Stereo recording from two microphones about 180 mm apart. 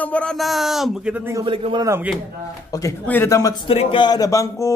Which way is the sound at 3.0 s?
10° left (ahead or behind).